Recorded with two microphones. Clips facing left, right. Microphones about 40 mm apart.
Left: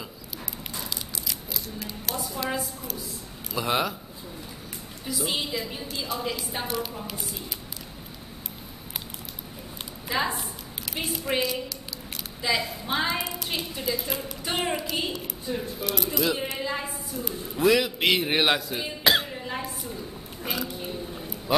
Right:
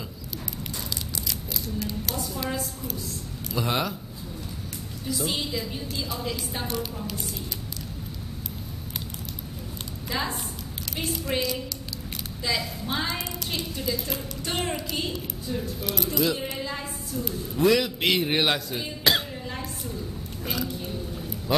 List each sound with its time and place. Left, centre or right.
1.2 s a sound: centre
2.6 s a woman's voice: centre
5.0 s a woman's voice: centre
10.0 s a woman's voice: centre
15.8 s a woman's voice: centre
20.4 s a sound: centre
21.5 s speech: centre